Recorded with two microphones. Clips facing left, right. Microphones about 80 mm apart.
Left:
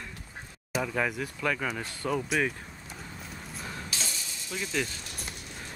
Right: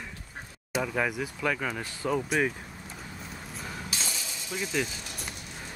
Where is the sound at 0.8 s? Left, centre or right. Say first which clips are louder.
Right 1 dB; centre.